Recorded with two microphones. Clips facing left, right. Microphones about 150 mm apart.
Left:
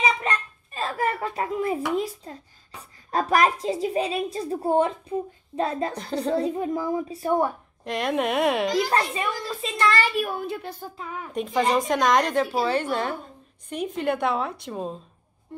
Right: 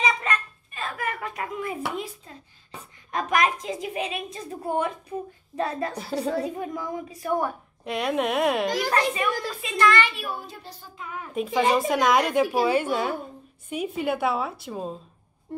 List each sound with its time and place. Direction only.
0.2 s dishes: 30° left (ahead or behind)
2.0 s a child's voice: 40° left (ahead or behind); by 5.9 s 20° left (ahead or behind)
5.9 s a woman's voice: 5° right (ahead or behind)
6.3 s a woman's voice: 25° left (ahead or behind)
7.8 s a woman's voice: centre (ahead or behind)
8.7 s a woman's voice: 25° left (ahead or behind); by 10.9 s 55° left (ahead or behind)
11.3 s a woman's voice: 5° right (ahead or behind)